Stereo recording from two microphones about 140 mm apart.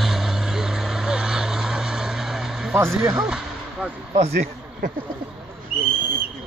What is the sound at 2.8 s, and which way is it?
Speech, 10° right (ahead or behind).